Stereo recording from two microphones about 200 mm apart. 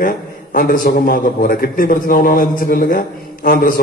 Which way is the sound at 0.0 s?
45° left (ahead or behind).